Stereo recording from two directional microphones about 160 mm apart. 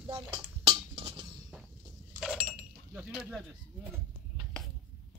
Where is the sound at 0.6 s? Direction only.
35° right (ahead or behind).